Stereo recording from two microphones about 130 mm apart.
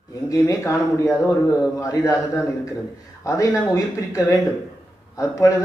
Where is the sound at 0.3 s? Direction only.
25° left (ahead or behind).